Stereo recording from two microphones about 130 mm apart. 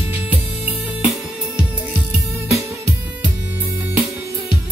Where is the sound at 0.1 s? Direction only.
10° right (ahead or behind).